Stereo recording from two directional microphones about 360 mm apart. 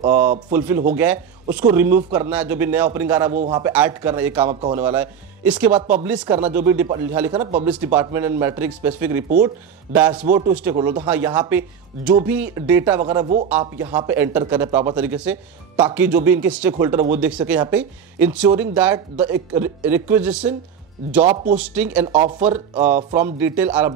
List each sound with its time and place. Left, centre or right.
0.5 s speech: centre
2.2 s speech: centre
4.5 s speech: centre
4.8 s speech: centre
5.8 s speech: right
6.0 s speech: centre